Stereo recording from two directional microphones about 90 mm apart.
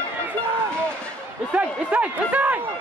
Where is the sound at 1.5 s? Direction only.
15° right (ahead or behind).